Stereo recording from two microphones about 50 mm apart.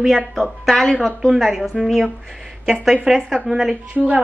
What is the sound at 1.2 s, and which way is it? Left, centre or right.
A woman's voice, centre.